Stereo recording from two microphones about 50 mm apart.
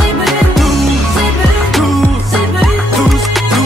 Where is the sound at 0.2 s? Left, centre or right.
Centre.